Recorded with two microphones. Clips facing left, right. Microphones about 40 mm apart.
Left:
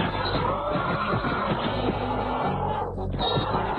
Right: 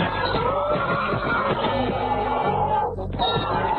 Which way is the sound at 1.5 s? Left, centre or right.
Centre.